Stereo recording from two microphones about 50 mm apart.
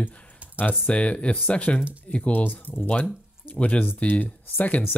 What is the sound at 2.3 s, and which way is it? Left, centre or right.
Speech, left.